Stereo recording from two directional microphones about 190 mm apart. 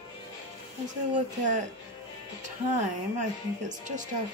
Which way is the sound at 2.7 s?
40° right (ahead or behind).